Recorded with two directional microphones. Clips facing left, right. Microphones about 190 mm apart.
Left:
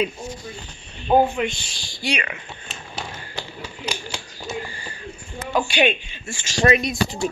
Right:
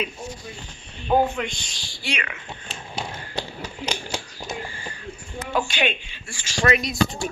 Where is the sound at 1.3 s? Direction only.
5° left (ahead or behind).